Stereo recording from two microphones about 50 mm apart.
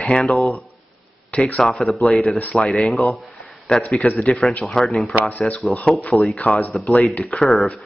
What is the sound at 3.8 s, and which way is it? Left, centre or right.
Speech, left.